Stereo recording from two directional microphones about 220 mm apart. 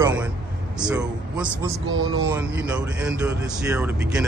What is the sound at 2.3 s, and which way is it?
Speech, 10° right (ahead or behind).